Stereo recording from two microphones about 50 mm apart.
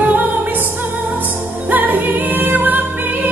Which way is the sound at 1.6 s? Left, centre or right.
Right.